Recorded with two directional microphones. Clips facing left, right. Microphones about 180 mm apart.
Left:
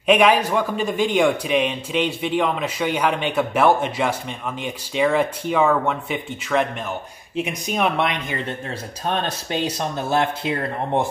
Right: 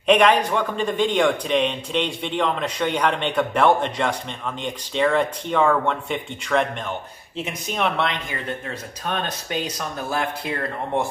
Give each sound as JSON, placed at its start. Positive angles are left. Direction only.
{"t": 0.0, "sound": "a man's voice", "side_deg": 5}
{"t": 7.3, "sound": "speech", "side_deg": 15}
{"t": 9.0, "sound": "speech", "side_deg": 30}